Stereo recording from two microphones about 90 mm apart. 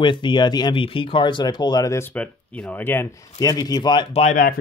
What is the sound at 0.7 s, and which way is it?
Speech, 75° left (ahead or behind).